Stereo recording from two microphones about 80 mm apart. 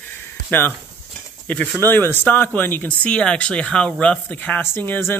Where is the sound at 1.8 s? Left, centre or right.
Left.